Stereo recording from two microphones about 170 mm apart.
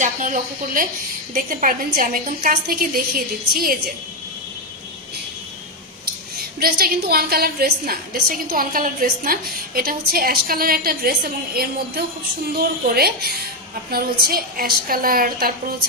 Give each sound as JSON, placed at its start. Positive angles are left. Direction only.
{"t": 0.0, "sound": "a woman's voice", "side_deg": -45}
{"t": 6.3, "sound": "a woman's voice", "side_deg": -60}